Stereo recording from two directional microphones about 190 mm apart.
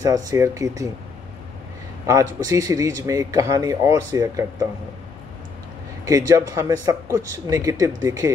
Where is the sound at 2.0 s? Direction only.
20° right (ahead or behind).